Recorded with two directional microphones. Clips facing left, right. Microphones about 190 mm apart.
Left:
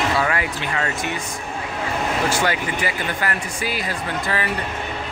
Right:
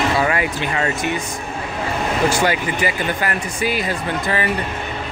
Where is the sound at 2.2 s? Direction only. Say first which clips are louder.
Right 3 dB; 15° right (ahead or behind).